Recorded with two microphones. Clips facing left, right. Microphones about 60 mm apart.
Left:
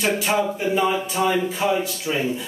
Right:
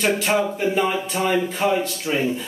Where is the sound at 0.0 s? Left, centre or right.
Centre.